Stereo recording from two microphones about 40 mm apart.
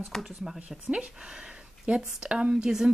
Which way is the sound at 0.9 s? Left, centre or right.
Right.